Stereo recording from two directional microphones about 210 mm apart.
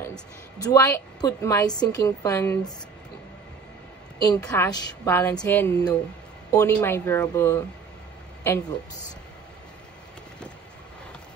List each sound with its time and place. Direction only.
0.6 s a woman's voice: 15° left (ahead or behind)
4.2 s a woman's voice: 15° left (ahead or behind)